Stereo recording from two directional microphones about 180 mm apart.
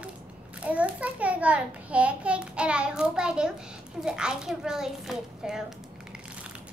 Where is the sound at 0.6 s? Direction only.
5° right (ahead or behind).